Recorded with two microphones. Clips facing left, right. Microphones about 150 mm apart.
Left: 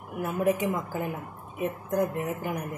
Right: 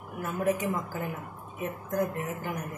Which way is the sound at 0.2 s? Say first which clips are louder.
Left 3 dB; 15° left (ahead or behind).